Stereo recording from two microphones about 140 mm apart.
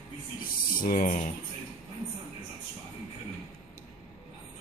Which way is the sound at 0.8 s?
70° left (ahead or behind).